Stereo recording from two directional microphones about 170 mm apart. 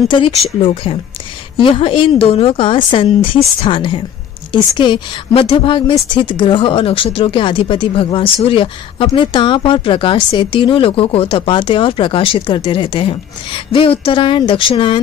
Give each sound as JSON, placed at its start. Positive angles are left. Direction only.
{"t": 0.1, "sound": "a woman's voice", "side_deg": 35}